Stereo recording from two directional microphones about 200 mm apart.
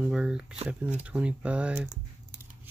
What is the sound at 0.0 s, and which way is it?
Speech, 5° right (ahead or behind).